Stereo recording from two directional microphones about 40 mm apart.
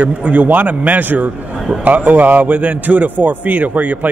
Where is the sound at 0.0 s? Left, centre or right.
Right.